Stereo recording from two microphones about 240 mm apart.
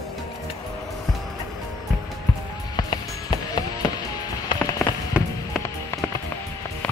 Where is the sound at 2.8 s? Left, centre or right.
Centre.